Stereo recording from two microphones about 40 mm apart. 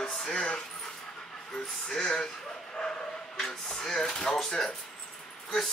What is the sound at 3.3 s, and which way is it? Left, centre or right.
Chopping, centre.